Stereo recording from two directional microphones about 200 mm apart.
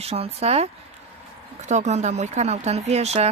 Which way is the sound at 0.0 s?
30° right (ahead or behind).